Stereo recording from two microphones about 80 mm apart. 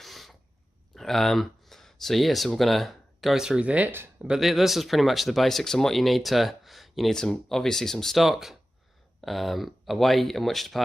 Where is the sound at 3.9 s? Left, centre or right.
Right.